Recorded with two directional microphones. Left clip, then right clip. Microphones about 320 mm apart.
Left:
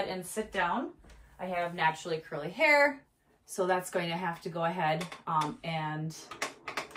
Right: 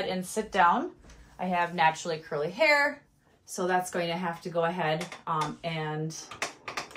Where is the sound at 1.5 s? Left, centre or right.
Centre.